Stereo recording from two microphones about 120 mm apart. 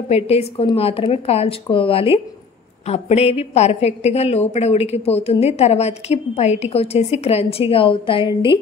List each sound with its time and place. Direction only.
0.1 s a woman's voice: 60° left (ahead or behind)
2.9 s a woman's voice: 60° left (ahead or behind); by 8.5 s 45° left (ahead or behind)